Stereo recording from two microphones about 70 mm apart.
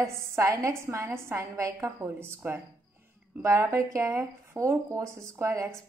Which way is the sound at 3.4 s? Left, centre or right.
Right.